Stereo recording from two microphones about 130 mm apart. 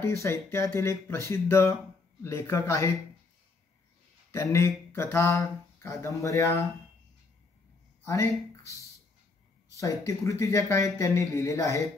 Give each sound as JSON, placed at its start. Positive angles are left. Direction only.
{"t": 0.0, "sound": "speech", "side_deg": 20}
{"t": 4.3, "sound": "speech", "side_deg": 20}
{"t": 8.0, "sound": "speech", "side_deg": 25}
{"t": 9.8, "sound": "speech", "side_deg": 25}